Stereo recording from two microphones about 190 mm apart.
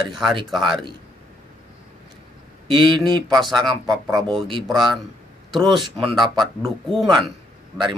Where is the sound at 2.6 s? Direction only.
25° right (ahead or behind).